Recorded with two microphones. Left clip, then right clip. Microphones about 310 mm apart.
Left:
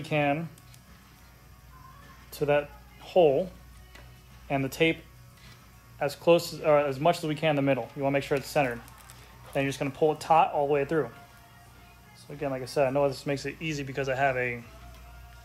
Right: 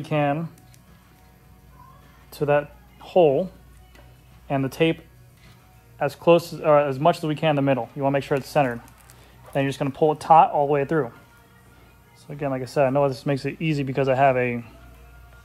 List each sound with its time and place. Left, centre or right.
0.0 s a man's voice: centre
2.3 s speech: centre
4.5 s a man's voice: centre
5.9 s a man's voice: centre
12.6 s speech: centre